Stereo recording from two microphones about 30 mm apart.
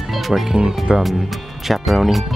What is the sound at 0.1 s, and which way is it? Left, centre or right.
Music, centre.